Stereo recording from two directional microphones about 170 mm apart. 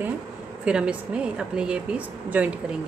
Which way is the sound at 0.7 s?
5° right (ahead or behind).